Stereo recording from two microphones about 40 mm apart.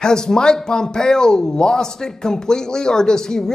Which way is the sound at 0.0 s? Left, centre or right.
Centre.